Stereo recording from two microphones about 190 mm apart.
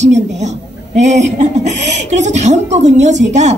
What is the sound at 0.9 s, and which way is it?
A woman's voice, 40° right (ahead or behind).